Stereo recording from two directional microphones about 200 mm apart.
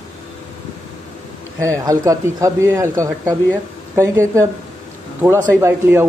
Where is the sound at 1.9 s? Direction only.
15° right (ahead or behind).